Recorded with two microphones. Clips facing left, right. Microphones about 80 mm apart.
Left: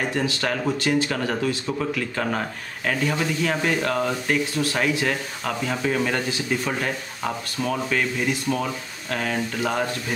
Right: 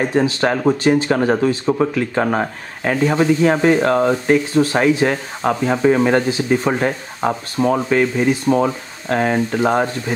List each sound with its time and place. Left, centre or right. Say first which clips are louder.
0.0 s speech: right 8 dB; right